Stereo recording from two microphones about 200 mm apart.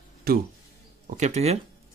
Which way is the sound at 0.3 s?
50° right (ahead or behind).